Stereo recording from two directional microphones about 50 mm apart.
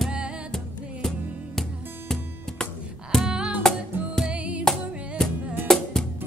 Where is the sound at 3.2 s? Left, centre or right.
Centre.